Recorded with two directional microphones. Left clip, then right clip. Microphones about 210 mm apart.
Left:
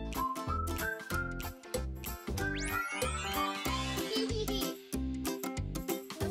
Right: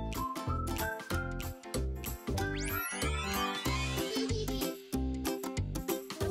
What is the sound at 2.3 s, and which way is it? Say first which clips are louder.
Music: even; centre (ahead or behind).